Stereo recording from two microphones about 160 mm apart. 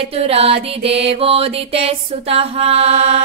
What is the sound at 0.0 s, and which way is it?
Music, 40° right (ahead or behind).